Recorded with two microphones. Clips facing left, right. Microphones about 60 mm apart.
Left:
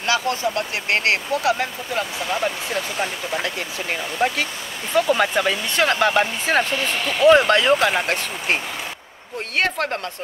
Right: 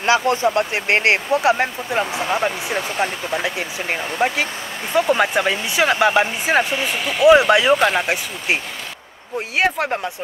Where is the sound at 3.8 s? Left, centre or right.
Right.